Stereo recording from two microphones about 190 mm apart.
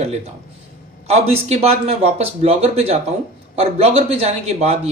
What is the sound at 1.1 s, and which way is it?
A man's voice, 30° right (ahead or behind).